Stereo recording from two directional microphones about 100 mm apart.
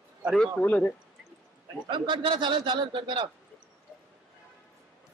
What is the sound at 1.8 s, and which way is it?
A man's voice, 55° right (ahead or behind).